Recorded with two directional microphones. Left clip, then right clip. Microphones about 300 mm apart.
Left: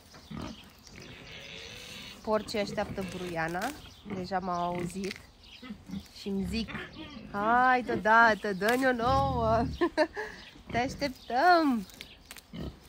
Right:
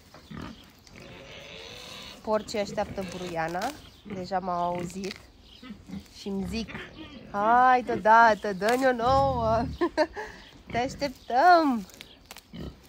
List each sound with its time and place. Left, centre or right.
1.1 s a sound: centre
4.2 s speech: centre
6.1 s speech: centre